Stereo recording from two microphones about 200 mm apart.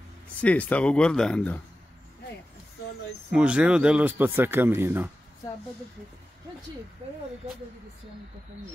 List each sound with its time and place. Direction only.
0.4 s speech: 5° left (ahead or behind)
3.3 s speech: 5° right (ahead or behind)